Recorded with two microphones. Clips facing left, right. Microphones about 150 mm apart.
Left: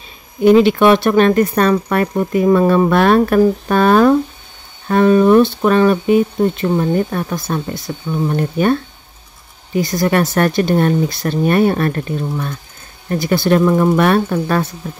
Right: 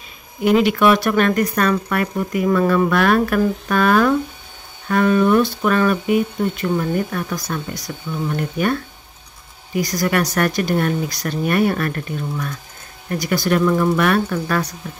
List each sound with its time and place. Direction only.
0.4 s speech: 30° left (ahead or behind)
9.8 s speech: 25° left (ahead or behind)